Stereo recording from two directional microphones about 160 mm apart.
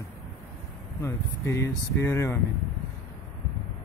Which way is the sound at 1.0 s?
15° left (ahead or behind).